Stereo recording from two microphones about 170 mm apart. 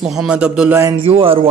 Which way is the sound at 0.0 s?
5° right (ahead or behind).